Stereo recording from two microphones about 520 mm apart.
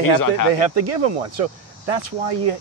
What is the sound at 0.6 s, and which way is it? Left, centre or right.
Speech, right.